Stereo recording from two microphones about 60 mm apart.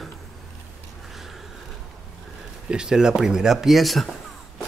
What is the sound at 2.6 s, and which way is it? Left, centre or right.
Speech, centre.